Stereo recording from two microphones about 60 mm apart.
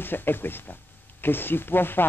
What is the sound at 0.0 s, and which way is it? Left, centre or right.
Speech, left.